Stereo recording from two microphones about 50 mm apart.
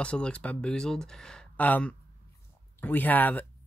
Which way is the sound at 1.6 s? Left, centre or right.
Left.